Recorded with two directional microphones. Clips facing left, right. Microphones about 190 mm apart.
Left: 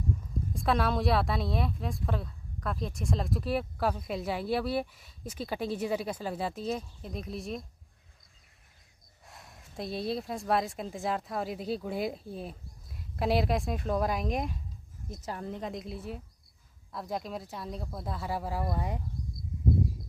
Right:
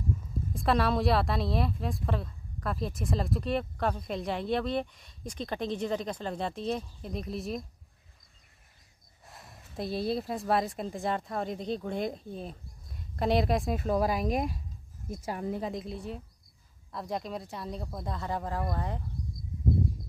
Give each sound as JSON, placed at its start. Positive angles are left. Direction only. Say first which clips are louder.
{"t": 0.6, "sound": "speech", "louder": "right 2 dB", "side_deg": 0}
{"t": 9.2, "sound": "speech", "louder": "right 1 dB", "side_deg": 0}